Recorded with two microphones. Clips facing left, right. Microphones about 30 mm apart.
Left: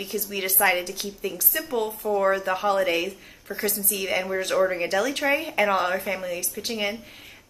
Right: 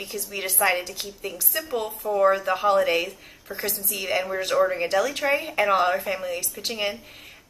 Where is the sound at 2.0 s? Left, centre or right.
Centre.